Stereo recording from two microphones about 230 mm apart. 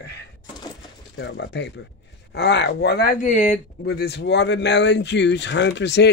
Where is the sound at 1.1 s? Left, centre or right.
Left.